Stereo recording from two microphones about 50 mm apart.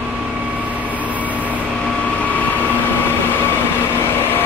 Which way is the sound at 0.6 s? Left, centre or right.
Right.